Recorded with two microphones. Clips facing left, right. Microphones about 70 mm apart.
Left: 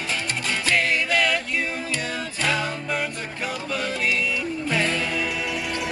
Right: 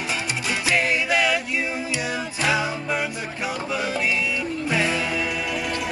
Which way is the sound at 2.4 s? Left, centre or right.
Centre.